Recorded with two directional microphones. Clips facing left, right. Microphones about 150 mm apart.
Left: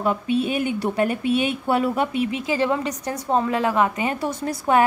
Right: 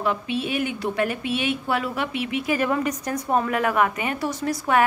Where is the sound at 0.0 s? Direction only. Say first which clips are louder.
Left 4 dB; 35° left (ahead or behind).